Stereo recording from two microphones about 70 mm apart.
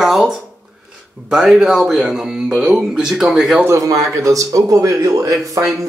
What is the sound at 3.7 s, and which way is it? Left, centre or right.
Speech, right.